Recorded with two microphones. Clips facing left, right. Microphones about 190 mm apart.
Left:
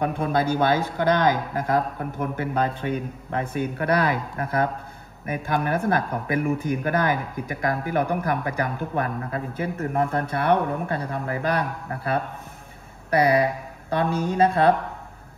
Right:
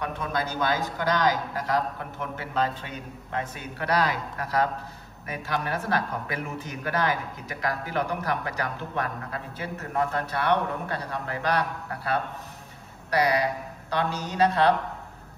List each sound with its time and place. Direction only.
0.5 s a man's voice: 55° left (ahead or behind)